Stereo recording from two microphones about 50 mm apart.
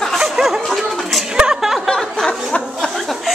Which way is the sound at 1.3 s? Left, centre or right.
Centre.